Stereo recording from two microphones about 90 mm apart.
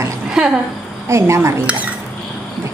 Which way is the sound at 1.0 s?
30° right (ahead or behind).